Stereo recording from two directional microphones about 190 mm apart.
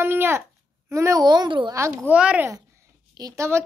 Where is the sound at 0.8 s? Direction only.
15° right (ahead or behind).